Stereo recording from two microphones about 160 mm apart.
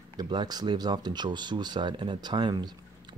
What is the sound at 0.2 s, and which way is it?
Speech, 25° right (ahead or behind).